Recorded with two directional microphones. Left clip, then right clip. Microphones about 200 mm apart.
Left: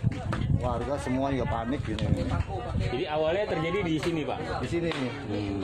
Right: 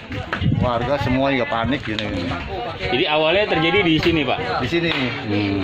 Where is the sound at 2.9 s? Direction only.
35° right (ahead or behind).